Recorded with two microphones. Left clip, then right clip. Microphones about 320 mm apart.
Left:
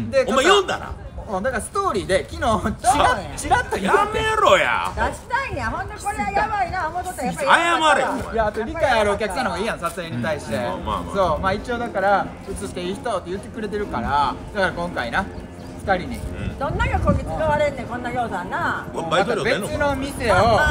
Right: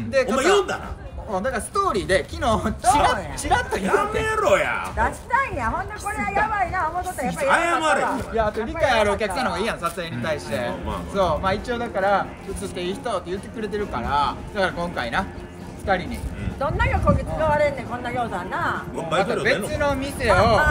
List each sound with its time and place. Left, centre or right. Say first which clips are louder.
0.1 s speech: left 3 dB; centre